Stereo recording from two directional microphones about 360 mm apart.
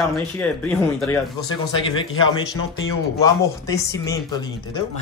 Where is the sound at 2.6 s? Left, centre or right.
Left.